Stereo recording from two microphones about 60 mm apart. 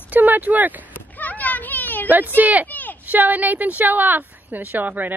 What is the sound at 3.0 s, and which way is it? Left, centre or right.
Speech, right.